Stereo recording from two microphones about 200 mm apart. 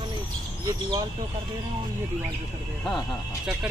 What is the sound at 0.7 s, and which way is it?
Speech, 20° right (ahead or behind).